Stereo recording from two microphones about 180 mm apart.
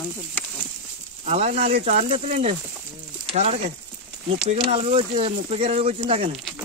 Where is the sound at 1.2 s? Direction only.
40° right (ahead or behind).